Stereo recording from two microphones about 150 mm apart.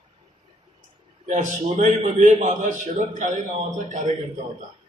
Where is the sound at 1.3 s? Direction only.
55° right (ahead or behind).